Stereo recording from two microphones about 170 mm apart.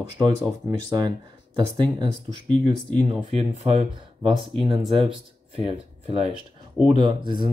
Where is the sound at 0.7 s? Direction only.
20° right (ahead or behind).